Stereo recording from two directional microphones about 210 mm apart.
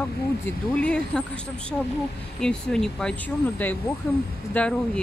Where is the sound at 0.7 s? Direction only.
5° left (ahead or behind).